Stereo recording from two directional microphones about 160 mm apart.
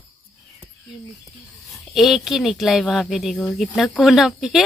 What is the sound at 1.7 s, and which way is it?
Speech, centre (ahead or behind).